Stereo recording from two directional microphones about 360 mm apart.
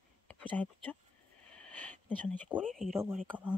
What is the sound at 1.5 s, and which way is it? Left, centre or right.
Speech, centre.